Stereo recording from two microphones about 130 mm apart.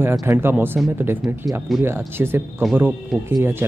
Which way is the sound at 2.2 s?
15° right (ahead or behind).